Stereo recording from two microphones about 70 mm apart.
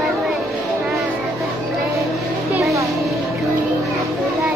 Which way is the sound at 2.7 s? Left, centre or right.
Right.